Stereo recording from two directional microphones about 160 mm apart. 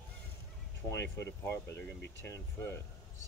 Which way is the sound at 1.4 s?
15° left (ahead or behind).